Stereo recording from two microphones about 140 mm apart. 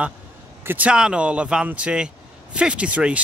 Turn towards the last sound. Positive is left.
turn(degrees=-10)  # may be behind; listen again after turning